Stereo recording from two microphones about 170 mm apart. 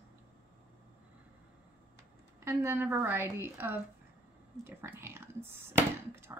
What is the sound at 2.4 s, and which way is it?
A woman's voice, 15° right (ahead or behind).